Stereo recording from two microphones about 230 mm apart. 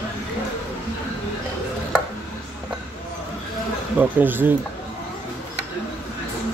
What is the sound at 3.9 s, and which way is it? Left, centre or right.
Speech, centre.